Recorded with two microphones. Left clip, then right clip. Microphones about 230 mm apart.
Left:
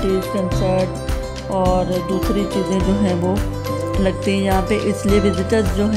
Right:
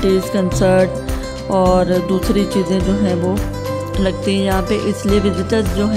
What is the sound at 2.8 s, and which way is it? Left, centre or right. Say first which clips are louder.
Music: right 1 dB; centre.